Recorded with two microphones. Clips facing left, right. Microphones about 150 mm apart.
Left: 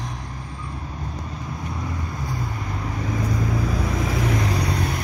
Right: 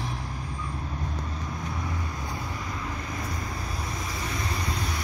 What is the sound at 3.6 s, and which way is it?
Vehicle, 90° left.